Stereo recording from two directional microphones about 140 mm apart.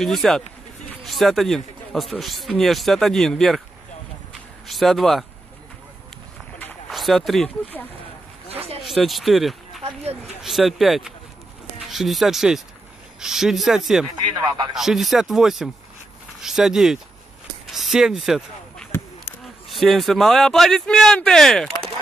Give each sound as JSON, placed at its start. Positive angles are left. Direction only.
{"t": 0.0, "sound": "speech", "side_deg": 5}
{"t": 4.6, "sound": "speech", "side_deg": 0}
{"t": 6.9, "sound": "speech", "side_deg": 0}
{"t": 8.5, "sound": "a sound", "side_deg": -45}
{"t": 8.8, "sound": "speech", "side_deg": 0}
{"t": 17.6, "sound": "a sound", "side_deg": 0}
{"t": 19.7, "sound": "speech", "side_deg": 0}